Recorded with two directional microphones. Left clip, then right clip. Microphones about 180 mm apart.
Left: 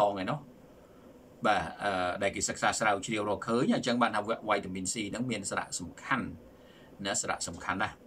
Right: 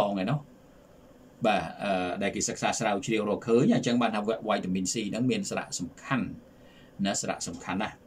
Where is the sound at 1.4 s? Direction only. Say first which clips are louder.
Right 2 dB; 20° right (ahead or behind).